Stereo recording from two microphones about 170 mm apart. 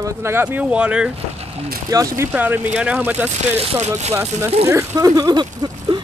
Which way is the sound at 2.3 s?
10° right (ahead or behind).